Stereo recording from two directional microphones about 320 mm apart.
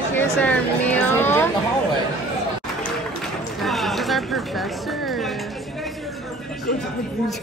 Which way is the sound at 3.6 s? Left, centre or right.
Centre.